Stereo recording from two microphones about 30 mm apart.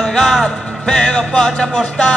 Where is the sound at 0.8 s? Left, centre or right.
Left.